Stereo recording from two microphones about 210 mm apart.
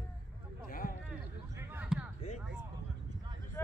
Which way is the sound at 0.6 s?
40° left (ahead or behind).